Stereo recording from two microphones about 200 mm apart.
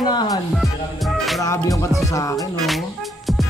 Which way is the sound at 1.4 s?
15° left (ahead or behind).